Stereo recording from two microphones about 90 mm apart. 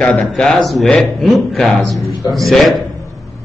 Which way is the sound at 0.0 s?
10° left (ahead or behind).